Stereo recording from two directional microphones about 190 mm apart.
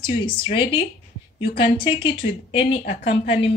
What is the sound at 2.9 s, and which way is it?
Speech, 60° left (ahead or behind).